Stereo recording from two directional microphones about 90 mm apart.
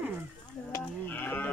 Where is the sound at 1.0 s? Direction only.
20° left (ahead or behind).